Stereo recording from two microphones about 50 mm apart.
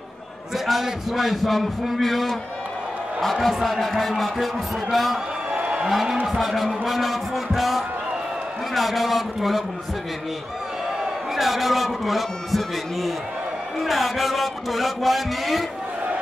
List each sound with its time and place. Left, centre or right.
0.7 s a man's voice: centre
5.6 s a sound: right
5.9 s a man's voice: centre
11.3 s a man's voice: centre